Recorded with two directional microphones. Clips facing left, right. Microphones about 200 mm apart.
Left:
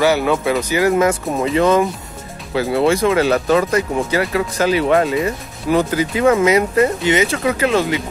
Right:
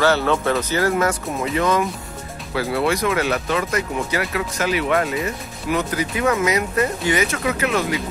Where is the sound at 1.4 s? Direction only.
30° left (ahead or behind).